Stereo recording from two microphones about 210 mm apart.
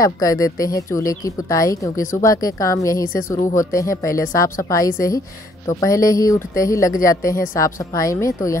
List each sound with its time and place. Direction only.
0.0 s speech: 15° left (ahead or behind)